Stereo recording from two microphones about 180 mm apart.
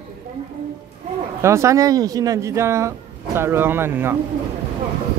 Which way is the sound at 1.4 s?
15° right (ahead or behind).